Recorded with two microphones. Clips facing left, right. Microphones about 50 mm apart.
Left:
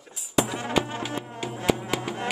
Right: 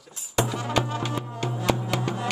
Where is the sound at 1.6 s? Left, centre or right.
Centre.